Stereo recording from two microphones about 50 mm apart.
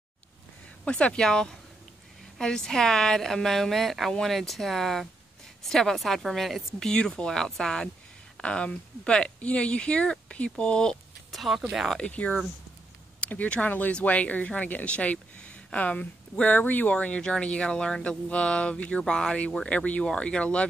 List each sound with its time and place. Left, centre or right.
0.8 s a woman's voice: left; by 6.9 s centre
6.9 s a woman's voice: centre
11.3 s speech: centre
12.0 s speech: left
16.9 s speech: left